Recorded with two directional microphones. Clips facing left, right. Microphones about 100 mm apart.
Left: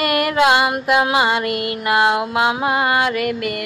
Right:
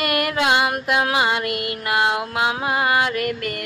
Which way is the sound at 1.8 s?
55° left (ahead or behind).